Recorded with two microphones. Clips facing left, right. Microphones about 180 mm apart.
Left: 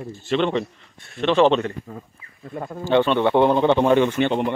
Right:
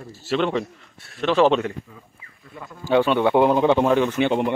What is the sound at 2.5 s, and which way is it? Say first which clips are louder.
Speech: left 9 dB; 45° left (ahead or behind).